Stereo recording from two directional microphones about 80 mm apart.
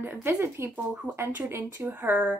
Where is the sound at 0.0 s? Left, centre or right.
Right.